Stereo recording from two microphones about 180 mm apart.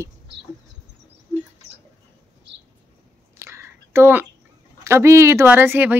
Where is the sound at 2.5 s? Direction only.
75° right (ahead or behind).